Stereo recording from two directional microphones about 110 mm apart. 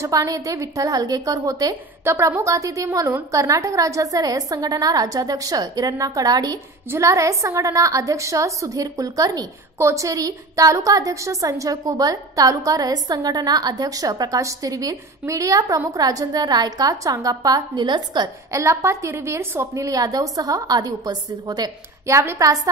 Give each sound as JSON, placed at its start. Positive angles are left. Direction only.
{"t": 0.0, "sound": "a woman's voice", "side_deg": -30}
{"t": 18.5, "sound": "a woman's voice", "side_deg": -25}